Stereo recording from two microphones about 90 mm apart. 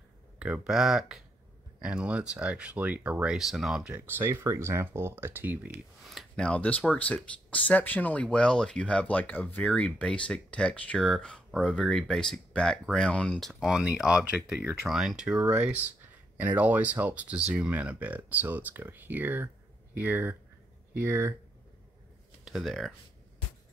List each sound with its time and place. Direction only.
0.7 s speech: 5° right (ahead or behind)
3.3 s speech: centre (ahead or behind)
3.9 s speech: 25° right (ahead or behind)
6.0 s speech: 5° left (ahead or behind)
13.7 s speech: 10° right (ahead or behind); by 21.4 s 30° right (ahead or behind)
22.4 s speech: centre (ahead or behind)